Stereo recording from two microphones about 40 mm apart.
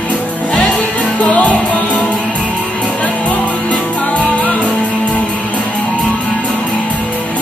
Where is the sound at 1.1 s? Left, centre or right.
Left.